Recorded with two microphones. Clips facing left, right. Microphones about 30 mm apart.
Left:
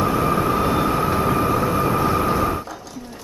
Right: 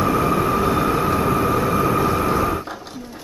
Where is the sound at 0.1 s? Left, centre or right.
Centre.